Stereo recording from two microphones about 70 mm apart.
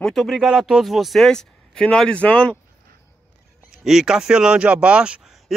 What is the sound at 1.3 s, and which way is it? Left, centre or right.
A man's voice, centre.